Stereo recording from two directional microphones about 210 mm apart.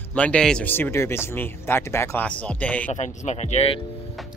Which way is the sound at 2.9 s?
35° left (ahead or behind).